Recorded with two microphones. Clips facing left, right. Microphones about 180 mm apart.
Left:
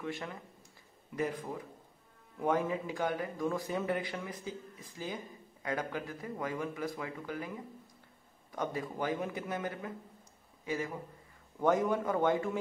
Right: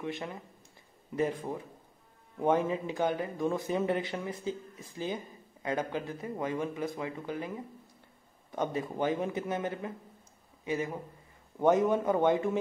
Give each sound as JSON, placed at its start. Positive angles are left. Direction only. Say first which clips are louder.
{"t": 0.0, "sound": "a man's voice", "louder": "right 3 dB", "side_deg": -20}